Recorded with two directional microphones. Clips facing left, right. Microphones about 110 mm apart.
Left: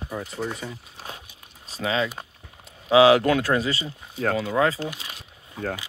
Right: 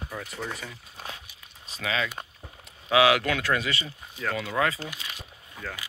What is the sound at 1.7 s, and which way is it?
Speech, 30° left (ahead or behind).